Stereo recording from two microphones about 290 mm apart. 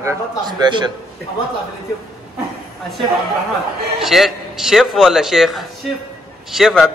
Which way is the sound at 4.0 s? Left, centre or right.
Centre.